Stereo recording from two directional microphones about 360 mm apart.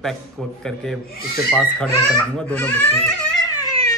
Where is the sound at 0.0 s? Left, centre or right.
Centre.